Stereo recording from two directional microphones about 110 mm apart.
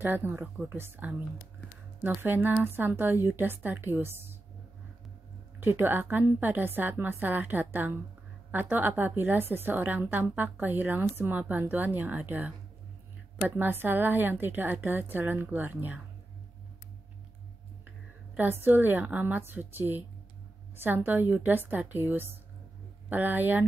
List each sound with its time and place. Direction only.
0.0 s a woman's voice: 20° right (ahead or behind)
5.6 s a woman's voice: 20° right (ahead or behind)
13.6 s a woman's voice: 15° right (ahead or behind)
18.3 s a woman's voice: 15° right (ahead or behind)